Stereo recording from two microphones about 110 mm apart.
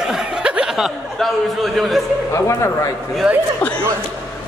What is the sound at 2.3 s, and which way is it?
Speech, 25° left (ahead or behind).